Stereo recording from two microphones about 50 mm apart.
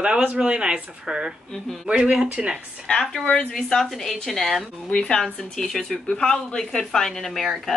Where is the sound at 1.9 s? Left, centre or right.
Centre.